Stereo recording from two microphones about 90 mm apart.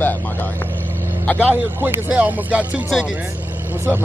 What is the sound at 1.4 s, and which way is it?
Speech, 15° right (ahead or behind).